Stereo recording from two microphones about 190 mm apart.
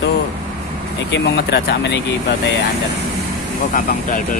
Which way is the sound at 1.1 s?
65° left (ahead or behind).